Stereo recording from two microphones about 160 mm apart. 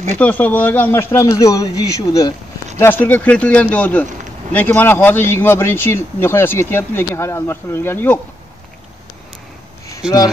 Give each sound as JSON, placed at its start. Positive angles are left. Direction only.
{"t": 0.2, "sound": "speech", "side_deg": 10}
{"t": 2.8, "sound": "speech", "side_deg": 10}